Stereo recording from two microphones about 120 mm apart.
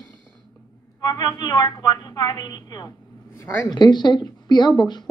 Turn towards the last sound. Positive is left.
turn(degrees=35)  # may be behind; listen again after turning